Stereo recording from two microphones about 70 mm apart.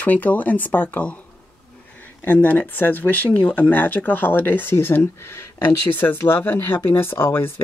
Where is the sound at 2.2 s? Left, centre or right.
Left.